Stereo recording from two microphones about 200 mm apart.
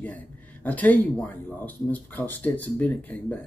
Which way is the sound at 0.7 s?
10° left (ahead or behind).